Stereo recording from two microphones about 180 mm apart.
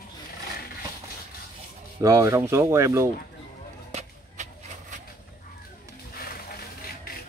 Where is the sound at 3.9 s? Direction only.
40° right (ahead or behind).